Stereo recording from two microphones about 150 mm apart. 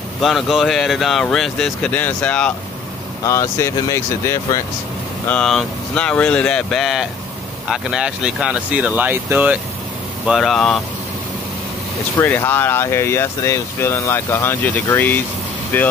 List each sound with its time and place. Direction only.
0.2 s speech: centre (ahead or behind)
3.3 s speech: 20° left (ahead or behind)
5.3 s speech: 5° left (ahead or behind)
10.2 s speech: centre (ahead or behind)
12.2 s speech: 15° left (ahead or behind)